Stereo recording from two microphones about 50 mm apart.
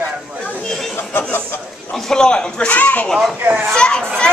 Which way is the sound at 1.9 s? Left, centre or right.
Centre.